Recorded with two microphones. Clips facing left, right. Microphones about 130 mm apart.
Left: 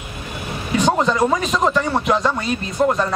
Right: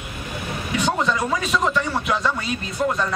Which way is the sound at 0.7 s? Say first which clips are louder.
Left 5 dB; 40° left (ahead or behind).